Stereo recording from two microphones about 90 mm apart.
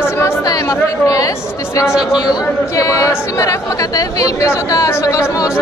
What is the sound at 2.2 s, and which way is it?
A man's voice, 45° left (ahead or behind).